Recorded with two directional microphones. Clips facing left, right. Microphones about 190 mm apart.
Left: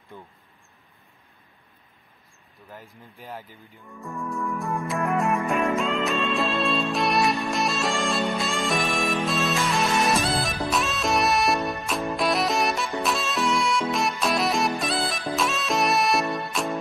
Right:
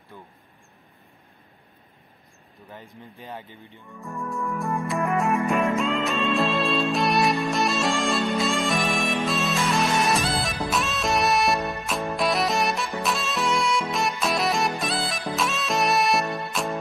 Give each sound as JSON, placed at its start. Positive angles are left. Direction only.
{"t": 0.1, "sound": "speech", "side_deg": 15}
{"t": 2.7, "sound": "speech", "side_deg": 0}
{"t": 4.0, "sound": "music", "side_deg": 0}